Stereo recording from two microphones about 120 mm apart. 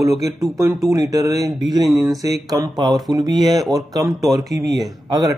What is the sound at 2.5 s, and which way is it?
Speech, 35° right (ahead or behind).